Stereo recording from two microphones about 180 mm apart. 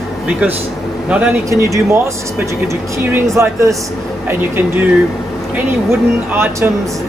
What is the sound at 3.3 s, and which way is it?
A man's voice, 15° right (ahead or behind).